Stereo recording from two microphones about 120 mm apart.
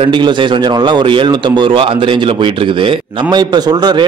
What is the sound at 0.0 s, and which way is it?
A man's voice, 40° right (ahead or behind).